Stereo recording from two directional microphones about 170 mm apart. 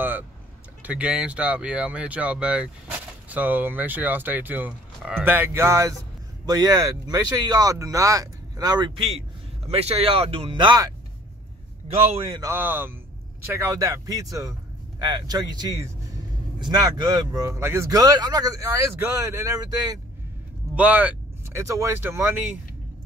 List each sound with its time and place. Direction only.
0.8 s speech: 10° right (ahead or behind); by 10.9 s 25° right (ahead or behind)
12.4 s speech: 15° right (ahead or behind)
20.7 s speech: 10° right (ahead or behind)